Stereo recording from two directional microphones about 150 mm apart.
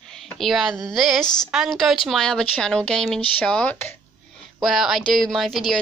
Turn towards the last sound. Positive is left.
turn(degrees=5)  # may be behind; listen again after turning